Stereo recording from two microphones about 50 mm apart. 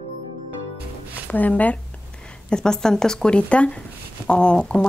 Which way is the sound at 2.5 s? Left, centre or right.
Centre.